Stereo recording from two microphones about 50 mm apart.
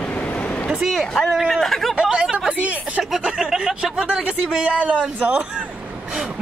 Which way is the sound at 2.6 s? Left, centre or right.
Right.